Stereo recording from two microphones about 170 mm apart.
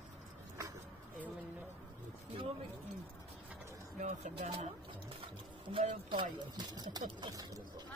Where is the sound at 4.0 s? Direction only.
45° right (ahead or behind).